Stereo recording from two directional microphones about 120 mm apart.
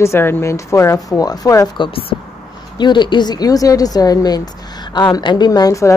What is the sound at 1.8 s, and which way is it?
Speech, 50° left (ahead or behind).